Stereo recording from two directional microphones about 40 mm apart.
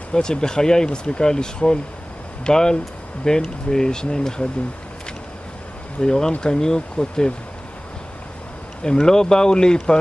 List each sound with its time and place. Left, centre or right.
0.1 s speech: centre
5.9 s speech: centre
8.8 s speech: centre